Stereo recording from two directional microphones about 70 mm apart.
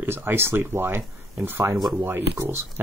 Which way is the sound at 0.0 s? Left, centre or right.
Right.